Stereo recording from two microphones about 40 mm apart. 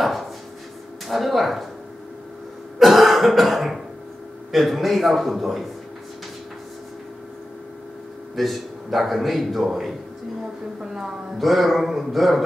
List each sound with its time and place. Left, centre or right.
0.0 s chopping: centre
1.0 s a man's voice: centre
2.8 s throat clearing: centre
4.5 s a man's voice: centre
8.4 s a man's voice: centre
10.8 s a woman's voice: centre
11.3 s a man's voice: centre